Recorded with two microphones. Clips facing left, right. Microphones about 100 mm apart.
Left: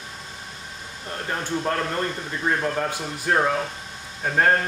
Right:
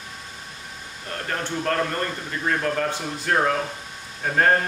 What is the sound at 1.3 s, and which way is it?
Speech, 15° left (ahead or behind).